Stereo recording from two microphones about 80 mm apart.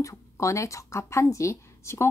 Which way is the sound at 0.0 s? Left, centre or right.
Left.